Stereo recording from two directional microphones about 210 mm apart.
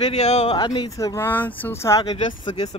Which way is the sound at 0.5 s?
20° left (ahead or behind).